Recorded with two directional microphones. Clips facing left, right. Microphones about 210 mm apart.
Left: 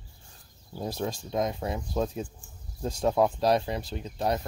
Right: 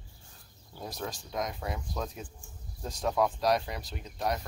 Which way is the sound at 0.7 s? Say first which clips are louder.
Left 7 dB; 30° left (ahead or behind).